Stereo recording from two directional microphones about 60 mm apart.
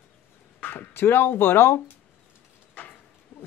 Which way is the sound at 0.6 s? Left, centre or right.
Left.